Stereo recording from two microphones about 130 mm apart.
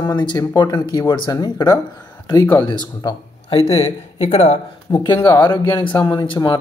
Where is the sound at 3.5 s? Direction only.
55° left (ahead or behind).